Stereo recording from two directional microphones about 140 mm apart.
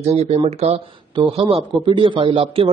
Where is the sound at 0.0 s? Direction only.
50° right (ahead or behind).